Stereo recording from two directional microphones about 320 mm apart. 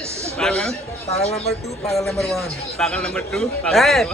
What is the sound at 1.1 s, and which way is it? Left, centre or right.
Speech, centre.